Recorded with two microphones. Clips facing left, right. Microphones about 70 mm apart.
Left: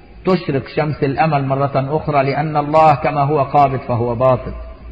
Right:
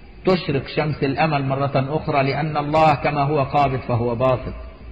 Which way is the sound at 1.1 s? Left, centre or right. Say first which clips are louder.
Left 5 dB; left.